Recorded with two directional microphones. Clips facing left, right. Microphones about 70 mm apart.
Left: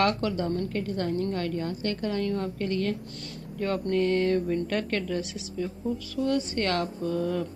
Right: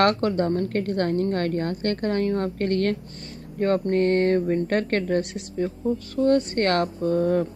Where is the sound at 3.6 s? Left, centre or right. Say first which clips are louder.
Right 5 dB; right.